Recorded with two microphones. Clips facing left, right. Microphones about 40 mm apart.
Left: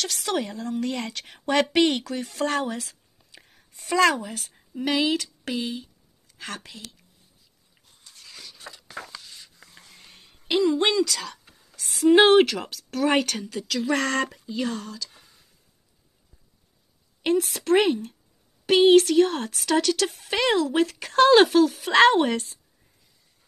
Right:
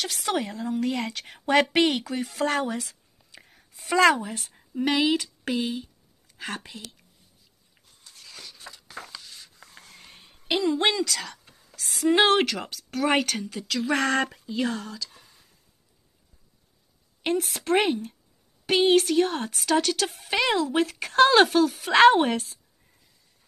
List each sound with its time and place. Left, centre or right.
0.0 s a woman's voice: centre
8.6 s a sound: left
9.4 s speech: centre
17.2 s speech: centre
22.0 s a woman's voice: centre